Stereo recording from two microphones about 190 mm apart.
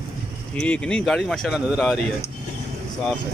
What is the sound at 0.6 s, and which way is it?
Speech, 5° left (ahead or behind).